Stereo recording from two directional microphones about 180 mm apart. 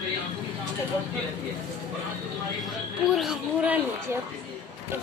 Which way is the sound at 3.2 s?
5° right (ahead or behind).